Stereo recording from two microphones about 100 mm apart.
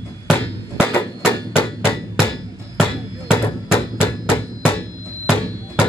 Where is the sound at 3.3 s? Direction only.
20° left (ahead or behind).